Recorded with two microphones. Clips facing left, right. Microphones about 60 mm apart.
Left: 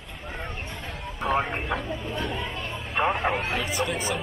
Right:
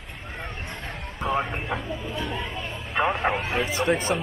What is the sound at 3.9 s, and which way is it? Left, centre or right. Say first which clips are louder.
Speech: right 3 dB; right.